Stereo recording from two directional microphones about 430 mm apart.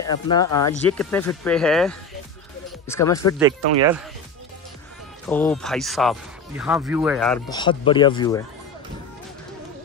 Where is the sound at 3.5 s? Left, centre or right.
Right.